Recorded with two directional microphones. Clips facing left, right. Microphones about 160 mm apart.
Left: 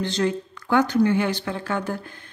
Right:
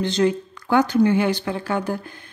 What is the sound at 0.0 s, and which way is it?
A woman's voice, 20° right (ahead or behind).